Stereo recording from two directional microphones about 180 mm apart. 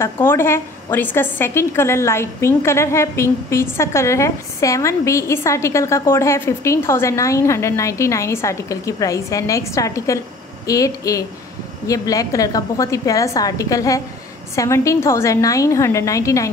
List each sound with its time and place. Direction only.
0.0 s a woman's voice: 15° left (ahead or behind)